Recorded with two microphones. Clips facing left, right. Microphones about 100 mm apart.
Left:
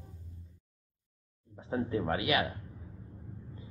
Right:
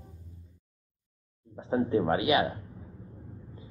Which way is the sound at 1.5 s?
25° right (ahead or behind).